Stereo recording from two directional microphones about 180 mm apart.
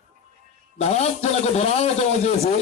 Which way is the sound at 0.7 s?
35° left (ahead or behind).